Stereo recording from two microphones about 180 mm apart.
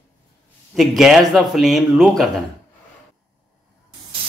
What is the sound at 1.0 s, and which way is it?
Speech, centre (ahead or behind).